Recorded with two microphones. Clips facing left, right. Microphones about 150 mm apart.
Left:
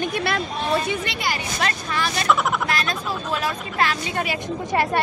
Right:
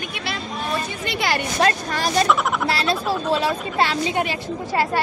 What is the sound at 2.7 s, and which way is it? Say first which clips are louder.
Speech: right 4 dB; 30° right (ahead or behind).